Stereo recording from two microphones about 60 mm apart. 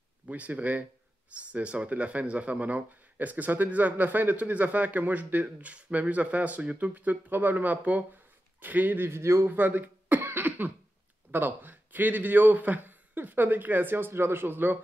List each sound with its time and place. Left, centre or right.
0.3 s speech: right
9.5 s cough: right
11.3 s speech: right